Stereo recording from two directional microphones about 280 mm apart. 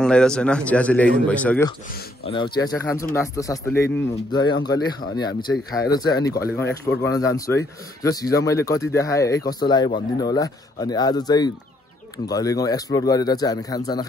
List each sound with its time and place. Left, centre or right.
0.0 s a man's voice: centre
2.2 s a man's voice: centre
6.6 s a man's voice: left
7.0 s a man's voice: centre